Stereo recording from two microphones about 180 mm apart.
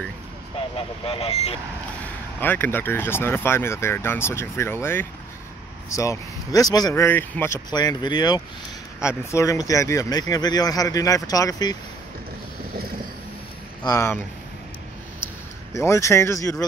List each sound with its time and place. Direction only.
0.7 s speech: 30° left (ahead or behind)
2.4 s speech: 10° left (ahead or behind)
13.8 s speech: 15° left (ahead or behind)
15.7 s speech: 15° left (ahead or behind)